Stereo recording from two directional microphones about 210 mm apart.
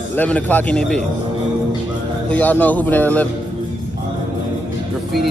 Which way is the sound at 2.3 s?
10° left (ahead or behind).